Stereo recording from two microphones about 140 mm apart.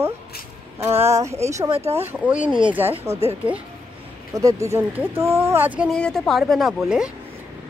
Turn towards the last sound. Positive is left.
turn(degrees=-5)  # may be behind; listen again after turning